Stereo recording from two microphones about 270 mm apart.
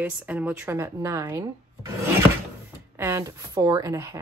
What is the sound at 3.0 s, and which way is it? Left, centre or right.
Speech, centre.